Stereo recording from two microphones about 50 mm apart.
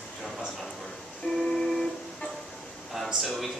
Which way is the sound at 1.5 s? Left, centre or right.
Centre.